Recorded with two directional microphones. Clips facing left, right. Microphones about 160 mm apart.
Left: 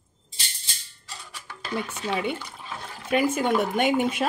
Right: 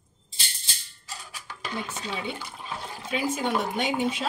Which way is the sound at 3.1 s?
55° left (ahead or behind).